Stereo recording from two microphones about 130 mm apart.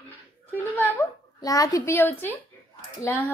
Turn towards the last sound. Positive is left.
turn(degrees=20)  # may be behind; listen again after turning